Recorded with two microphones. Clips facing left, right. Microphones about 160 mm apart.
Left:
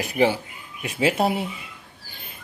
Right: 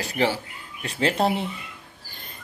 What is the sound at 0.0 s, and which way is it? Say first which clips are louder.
Speech: left 3 dB; 15° left (ahead or behind).